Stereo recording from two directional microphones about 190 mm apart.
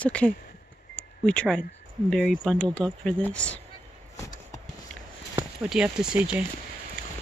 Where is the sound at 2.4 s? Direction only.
5° left (ahead or behind).